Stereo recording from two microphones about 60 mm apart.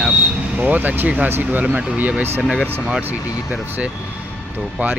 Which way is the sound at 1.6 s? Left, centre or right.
Right.